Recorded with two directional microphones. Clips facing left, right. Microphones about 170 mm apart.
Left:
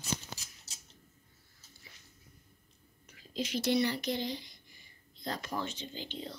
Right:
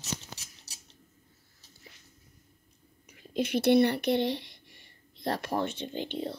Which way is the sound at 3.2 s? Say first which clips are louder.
Right 6 dB; 60° right (ahead or behind).